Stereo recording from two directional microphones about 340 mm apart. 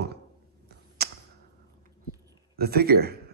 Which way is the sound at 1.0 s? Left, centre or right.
Right.